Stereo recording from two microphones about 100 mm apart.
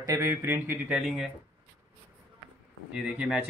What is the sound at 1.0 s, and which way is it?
Speech, 5° right (ahead or behind).